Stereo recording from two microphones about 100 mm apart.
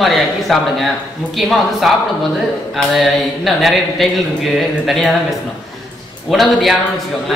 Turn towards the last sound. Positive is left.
turn(degrees=0)  # may be behind; listen again after turning